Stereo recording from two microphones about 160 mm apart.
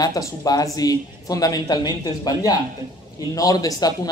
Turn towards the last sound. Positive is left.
turn(degrees=25)  # may be behind; listen again after turning